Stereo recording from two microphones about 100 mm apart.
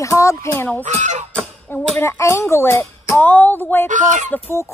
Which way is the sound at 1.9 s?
25° left (ahead or behind).